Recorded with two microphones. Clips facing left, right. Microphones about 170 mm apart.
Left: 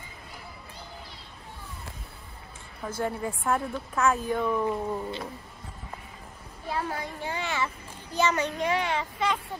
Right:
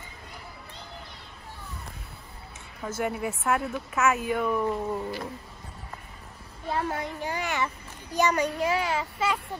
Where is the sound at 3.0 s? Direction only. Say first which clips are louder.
Right 1 dB; 10° right (ahead or behind).